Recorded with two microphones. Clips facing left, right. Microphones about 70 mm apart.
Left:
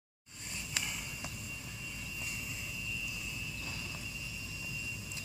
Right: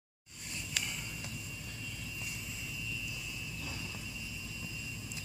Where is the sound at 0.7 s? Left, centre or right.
Centre.